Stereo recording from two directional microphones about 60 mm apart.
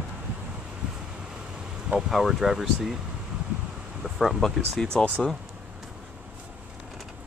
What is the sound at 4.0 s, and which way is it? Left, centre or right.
Speech, centre.